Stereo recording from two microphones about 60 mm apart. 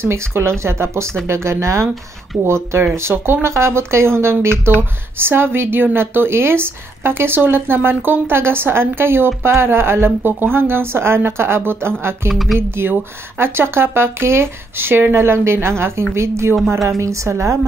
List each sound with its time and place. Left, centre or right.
0.0 s speech: right
4.7 s speech: right
12.3 s a woman's voice: centre
12.5 s a woman's voice: right